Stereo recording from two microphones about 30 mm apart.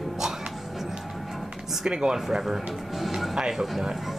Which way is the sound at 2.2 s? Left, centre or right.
Centre.